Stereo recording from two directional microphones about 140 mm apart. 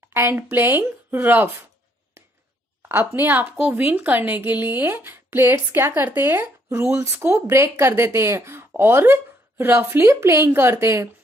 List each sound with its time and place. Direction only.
0.1 s speech: 15° right (ahead or behind)
2.9 s speech: 15° right (ahead or behind)